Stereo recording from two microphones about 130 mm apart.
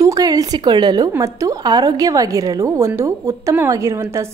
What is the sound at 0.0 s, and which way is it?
A woman's voice, 25° right (ahead or behind).